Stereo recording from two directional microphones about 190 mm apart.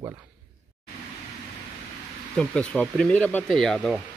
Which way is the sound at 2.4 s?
5° left (ahead or behind).